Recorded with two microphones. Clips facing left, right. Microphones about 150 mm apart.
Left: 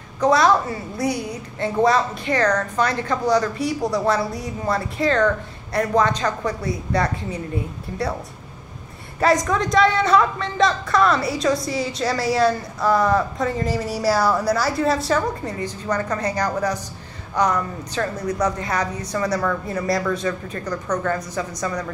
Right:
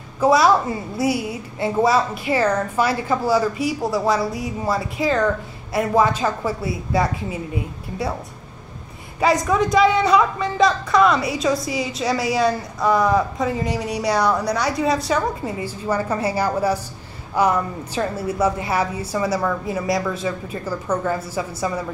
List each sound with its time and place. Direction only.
0.2 s a woman's voice: 5° right (ahead or behind)
9.2 s a woman's voice: centre (ahead or behind)